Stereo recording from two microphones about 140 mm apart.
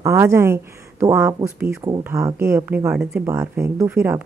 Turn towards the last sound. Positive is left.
turn(degrees=-15)  # may be behind; listen again after turning